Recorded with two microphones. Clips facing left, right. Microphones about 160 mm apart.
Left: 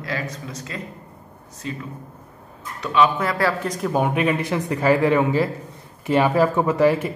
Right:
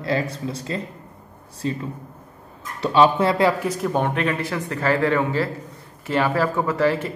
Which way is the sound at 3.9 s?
10° left (ahead or behind).